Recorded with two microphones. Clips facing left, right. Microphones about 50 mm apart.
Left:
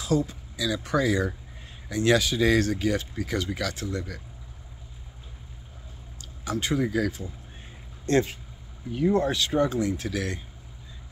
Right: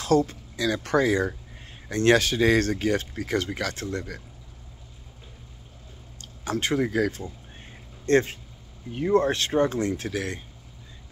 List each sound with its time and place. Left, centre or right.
0.0 s speech: right
6.5 s speech: right
10.0 s speech: right